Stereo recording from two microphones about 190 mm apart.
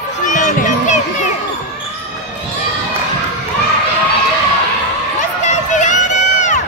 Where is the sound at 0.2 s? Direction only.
40° left (ahead or behind).